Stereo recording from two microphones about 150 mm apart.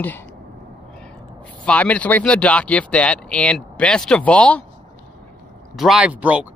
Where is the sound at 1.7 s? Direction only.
10° left (ahead or behind).